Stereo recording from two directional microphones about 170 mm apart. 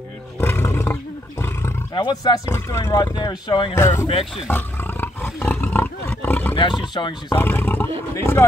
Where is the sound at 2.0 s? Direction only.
25° left (ahead or behind).